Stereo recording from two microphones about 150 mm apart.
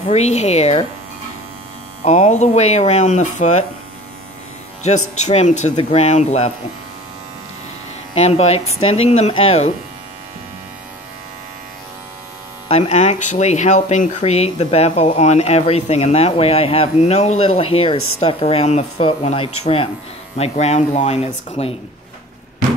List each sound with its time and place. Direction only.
0.1 s speech: 50° left (ahead or behind)
2.0 s speech: 50° left (ahead or behind)
4.8 s speech: 50° left (ahead or behind)
8.1 s speech: 45° left (ahead or behind)
12.6 s speech: 45° left (ahead or behind)